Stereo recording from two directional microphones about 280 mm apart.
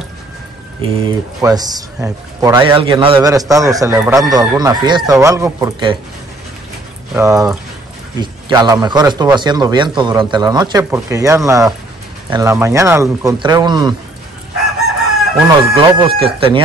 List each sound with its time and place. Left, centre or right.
0.8 s a man's voice: centre
7.2 s a man's voice: centre
15.6 s speech: centre